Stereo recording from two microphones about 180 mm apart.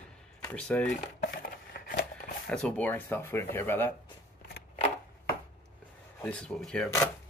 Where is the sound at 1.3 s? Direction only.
50° left (ahead or behind).